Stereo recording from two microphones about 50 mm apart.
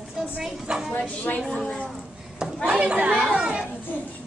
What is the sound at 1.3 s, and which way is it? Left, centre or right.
Speech, left.